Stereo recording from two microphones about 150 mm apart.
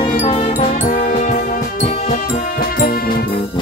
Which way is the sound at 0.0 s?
40° left (ahead or behind).